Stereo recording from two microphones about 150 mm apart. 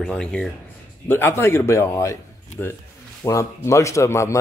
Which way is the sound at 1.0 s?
15° left (ahead or behind).